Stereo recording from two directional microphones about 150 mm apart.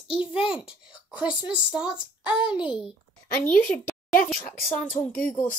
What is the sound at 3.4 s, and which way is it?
Speech, 10° left (ahead or behind).